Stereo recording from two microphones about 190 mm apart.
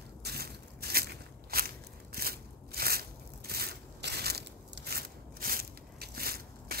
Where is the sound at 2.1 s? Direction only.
55° right (ahead or behind).